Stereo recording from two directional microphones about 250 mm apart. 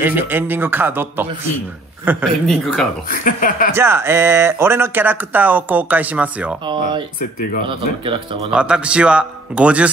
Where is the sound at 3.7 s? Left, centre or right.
Centre.